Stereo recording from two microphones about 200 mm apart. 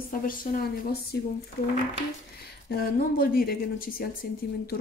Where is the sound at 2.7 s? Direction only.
50° left (ahead or behind).